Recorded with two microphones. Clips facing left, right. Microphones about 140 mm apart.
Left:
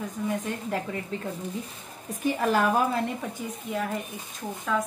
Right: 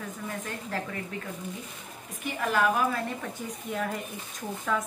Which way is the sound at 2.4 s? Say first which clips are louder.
Left 1 dB; 35° left (ahead or behind).